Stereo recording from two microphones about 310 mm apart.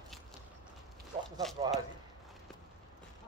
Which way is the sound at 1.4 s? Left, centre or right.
Centre.